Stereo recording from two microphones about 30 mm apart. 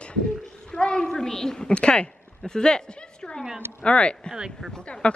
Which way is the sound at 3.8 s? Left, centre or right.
Left.